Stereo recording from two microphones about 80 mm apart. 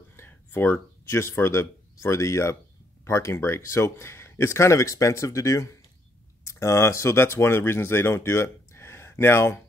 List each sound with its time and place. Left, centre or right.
0.1 s speech: left